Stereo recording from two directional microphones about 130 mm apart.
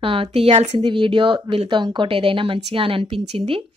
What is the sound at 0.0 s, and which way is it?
A woman's voice, 45° right (ahead or behind).